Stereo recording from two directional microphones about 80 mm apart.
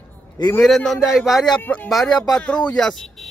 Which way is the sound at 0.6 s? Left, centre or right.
Centre.